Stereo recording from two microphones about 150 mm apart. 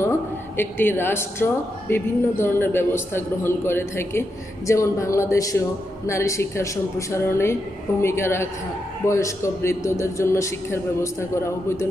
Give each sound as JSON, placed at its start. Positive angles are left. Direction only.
{"t": 0.6, "sound": "a woman's voice", "side_deg": 15}